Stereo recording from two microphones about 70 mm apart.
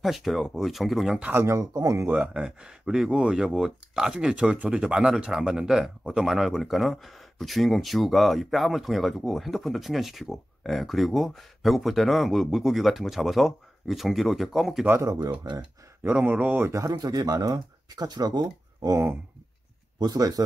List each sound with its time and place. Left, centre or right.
0.0 s speech: centre
1.4 s speech: right
2.0 s speech: right; by 14.9 s centre
16.0 s speech: right
16.6 s speech: right
20.0 s speech: right